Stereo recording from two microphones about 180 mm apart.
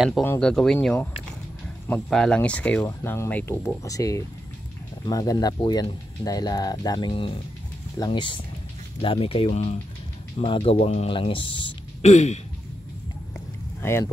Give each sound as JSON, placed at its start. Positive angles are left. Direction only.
{"t": 0.2, "sound": "speech", "side_deg": 5}
{"t": 12.1, "sound": "speech", "side_deg": 40}
{"t": 13.8, "sound": "speech", "side_deg": 15}